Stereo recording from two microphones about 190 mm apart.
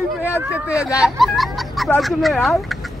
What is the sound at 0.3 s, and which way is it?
Speech, 10° right (ahead or behind).